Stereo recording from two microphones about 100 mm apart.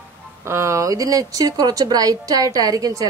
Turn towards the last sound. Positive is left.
turn(degrees=-35)  # may be behind; listen again after turning